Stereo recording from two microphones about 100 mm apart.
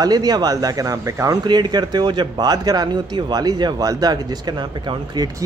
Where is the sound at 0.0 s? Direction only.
40° right (ahead or behind).